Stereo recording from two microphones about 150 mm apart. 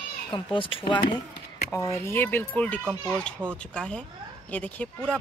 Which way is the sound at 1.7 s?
20° left (ahead or behind).